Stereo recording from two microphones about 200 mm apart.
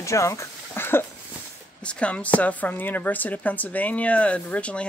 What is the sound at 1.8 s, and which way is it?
A woman's voice, 5° left (ahead or behind).